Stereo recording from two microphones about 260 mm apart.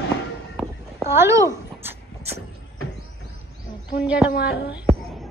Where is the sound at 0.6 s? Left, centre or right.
Centre.